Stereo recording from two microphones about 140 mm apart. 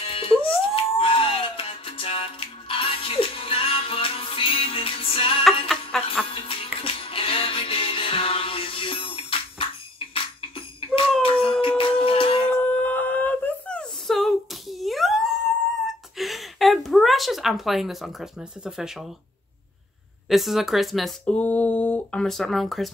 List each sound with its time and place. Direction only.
0.0 s music: 40° left (ahead or behind)
5.7 s jingle bell: 5° left (ahead or behind)
6.3 s music: 40° left (ahead or behind)
11.2 s a sound: 40° left (ahead or behind)
11.8 s music: 40° left (ahead or behind)
12.4 s a sound: 10° left (ahead or behind); by 19.0 s 5° right (ahead or behind)
20.2 s speech: centre (ahead or behind)